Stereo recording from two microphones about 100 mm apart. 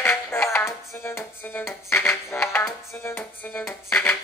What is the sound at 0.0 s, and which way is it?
Music, 25° left (ahead or behind).